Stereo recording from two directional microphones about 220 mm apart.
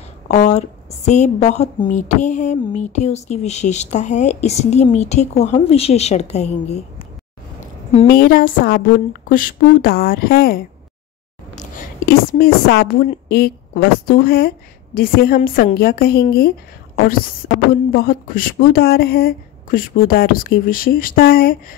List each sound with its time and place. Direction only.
0.3 s a woman's voice: 30° left (ahead or behind)
8.1 s a woman's voice: 40° left (ahead or behind)
11.5 s a sound: 40° left (ahead or behind)
13.3 s a woman's voice: 45° left (ahead or behind)
17.9 s a woman's voice: 40° left (ahead or behind)